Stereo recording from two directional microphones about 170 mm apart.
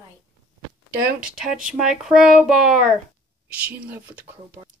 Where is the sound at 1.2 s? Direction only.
5° right (ahead or behind).